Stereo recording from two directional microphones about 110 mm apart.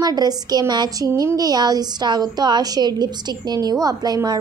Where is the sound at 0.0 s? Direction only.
35° right (ahead or behind).